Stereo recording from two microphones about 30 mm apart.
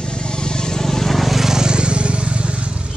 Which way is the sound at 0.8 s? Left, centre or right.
Centre.